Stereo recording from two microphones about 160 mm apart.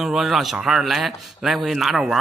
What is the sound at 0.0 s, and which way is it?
Speech, centre (ahead or behind).